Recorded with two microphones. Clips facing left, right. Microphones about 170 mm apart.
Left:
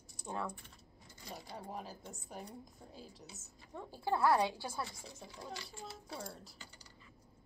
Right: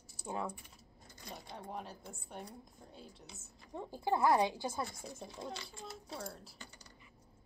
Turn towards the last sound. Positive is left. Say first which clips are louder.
# right 1 dB
turn(degrees=0)  # may be behind; listen again after turning